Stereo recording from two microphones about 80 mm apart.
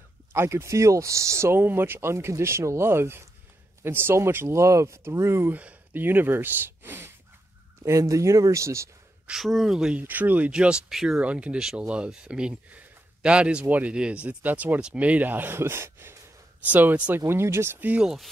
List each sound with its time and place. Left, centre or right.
0.3 s speech: right
5.5 s speech: centre
7.8 s speech: right
9.3 s speech: centre
10.0 s speech: right
16.6 s speech: centre
17.3 s speech: right
18.0 s speech: centre